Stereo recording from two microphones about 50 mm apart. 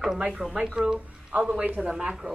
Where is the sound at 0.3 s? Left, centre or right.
Centre.